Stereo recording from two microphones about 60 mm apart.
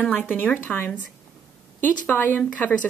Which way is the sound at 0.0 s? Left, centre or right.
Left.